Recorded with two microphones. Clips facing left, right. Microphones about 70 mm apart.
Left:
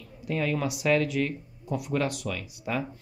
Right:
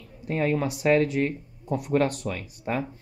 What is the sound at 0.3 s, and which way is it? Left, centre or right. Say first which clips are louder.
Speech: right 3 dB; right.